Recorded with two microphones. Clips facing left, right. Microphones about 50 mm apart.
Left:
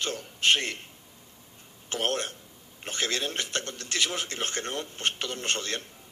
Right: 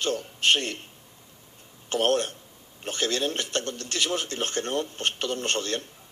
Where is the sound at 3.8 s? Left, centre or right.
Left.